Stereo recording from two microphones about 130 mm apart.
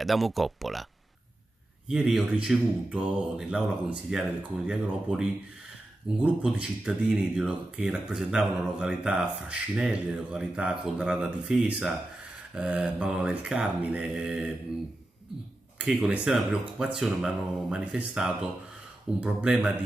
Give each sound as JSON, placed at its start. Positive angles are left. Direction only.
{"t": 0.0, "sound": "speech", "side_deg": 0}
{"t": 1.9, "sound": "speech", "side_deg": -5}
{"t": 15.8, "sound": "speech", "side_deg": -10}